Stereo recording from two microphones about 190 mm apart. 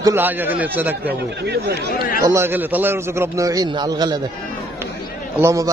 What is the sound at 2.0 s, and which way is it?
Speech, 50° left (ahead or behind).